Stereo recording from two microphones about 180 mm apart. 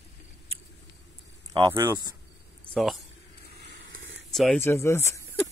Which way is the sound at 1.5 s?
25° right (ahead or behind).